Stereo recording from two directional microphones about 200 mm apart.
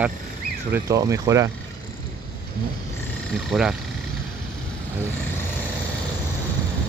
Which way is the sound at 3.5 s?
Centre (ahead or behind).